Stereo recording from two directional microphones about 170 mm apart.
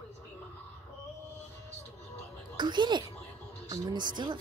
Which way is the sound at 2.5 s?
25° right (ahead or behind).